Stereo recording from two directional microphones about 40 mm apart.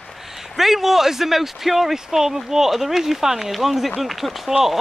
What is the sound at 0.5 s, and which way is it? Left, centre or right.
Speech, centre.